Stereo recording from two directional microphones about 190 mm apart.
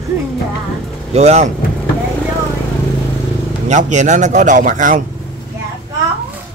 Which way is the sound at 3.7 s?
40° right (ahead or behind).